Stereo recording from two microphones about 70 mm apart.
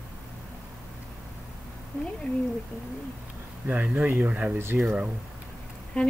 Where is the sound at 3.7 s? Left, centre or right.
Right.